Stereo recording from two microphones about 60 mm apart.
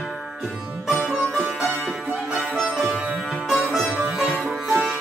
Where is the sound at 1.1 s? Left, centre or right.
Centre.